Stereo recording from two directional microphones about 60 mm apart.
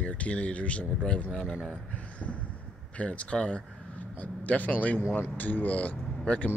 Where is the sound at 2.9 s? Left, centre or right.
Left.